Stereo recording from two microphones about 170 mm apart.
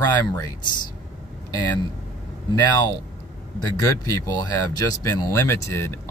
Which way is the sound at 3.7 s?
20° left (ahead or behind).